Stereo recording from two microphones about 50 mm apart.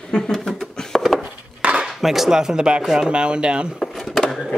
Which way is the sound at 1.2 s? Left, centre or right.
Right.